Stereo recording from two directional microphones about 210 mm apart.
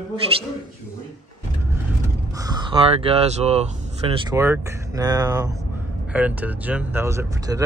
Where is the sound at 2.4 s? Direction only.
20° right (ahead or behind).